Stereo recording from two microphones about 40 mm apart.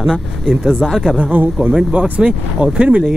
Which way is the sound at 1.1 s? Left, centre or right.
Right.